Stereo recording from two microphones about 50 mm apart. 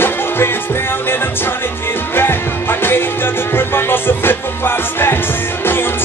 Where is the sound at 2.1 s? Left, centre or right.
Left.